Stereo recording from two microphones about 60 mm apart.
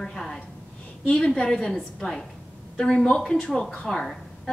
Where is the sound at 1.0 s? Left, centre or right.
Centre.